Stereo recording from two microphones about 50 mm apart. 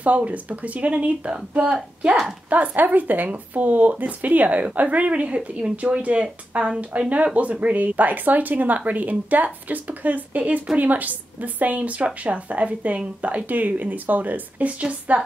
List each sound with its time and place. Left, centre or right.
0.0 s speech: right
2.5 s a woman's voice: right
6.5 s speech: centre
6.8 s a woman's voice: right